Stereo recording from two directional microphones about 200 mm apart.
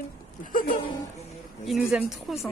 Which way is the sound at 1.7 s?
5° right (ahead or behind).